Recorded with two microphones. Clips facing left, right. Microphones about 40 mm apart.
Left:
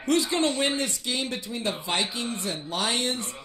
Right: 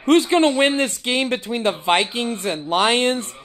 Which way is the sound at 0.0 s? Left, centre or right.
Right.